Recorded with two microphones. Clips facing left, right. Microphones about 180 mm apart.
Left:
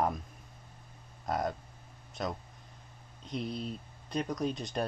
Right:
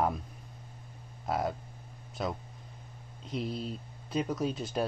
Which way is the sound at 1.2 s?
5° right (ahead or behind).